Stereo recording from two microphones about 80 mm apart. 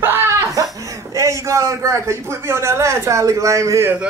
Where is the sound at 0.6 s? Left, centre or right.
Right.